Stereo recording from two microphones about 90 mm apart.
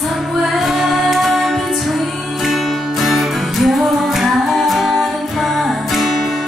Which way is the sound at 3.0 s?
Centre (ahead or behind).